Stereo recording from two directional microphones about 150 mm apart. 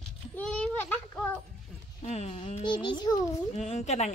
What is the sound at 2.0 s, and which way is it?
Speech, 45° left (ahead or behind).